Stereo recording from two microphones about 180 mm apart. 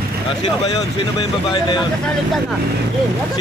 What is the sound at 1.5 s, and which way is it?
Speech, 25° left (ahead or behind).